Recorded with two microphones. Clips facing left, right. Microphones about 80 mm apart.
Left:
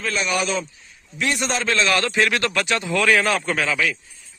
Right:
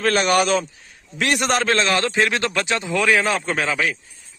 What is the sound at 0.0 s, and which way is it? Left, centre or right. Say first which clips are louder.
A man's voice: right 6 dB; right.